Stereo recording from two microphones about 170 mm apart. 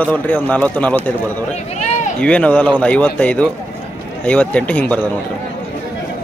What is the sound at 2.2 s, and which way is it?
Speech, 10° left (ahead or behind).